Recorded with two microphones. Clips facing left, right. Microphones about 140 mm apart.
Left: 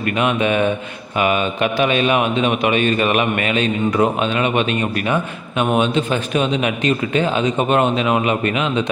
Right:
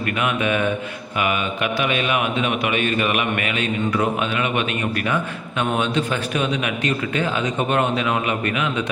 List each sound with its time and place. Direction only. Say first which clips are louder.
0.2 s a man's voice: left 4 dB; 25° left (ahead or behind)